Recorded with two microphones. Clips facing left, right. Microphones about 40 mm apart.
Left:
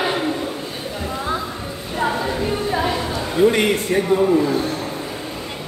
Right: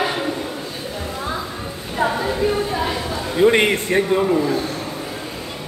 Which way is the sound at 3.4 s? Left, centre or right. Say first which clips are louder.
Right 2 dB; right.